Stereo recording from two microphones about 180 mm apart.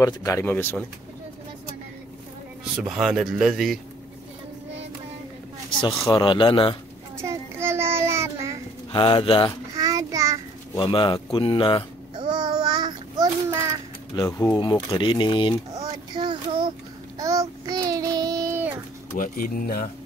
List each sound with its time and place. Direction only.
0.0 s speech: 15° left (ahead or behind)
2.8 s speech: 5° right (ahead or behind)
6.0 s speech: 25° left (ahead or behind)
7.2 s child singing: 15° right (ahead or behind)
8.9 s speech: 30° left (ahead or behind)
9.8 s child singing: 20° right (ahead or behind)
10.8 s speech: 25° left (ahead or behind)
12.2 s child singing: 25° right (ahead or behind)
14.1 s speech: 20° left (ahead or behind)
15.7 s a sound: 25° right (ahead or behind)
17.2 s child singing: 20° right (ahead or behind)
19.1 s speech: 50° left (ahead or behind)